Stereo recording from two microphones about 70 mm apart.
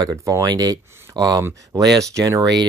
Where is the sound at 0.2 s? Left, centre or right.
Right.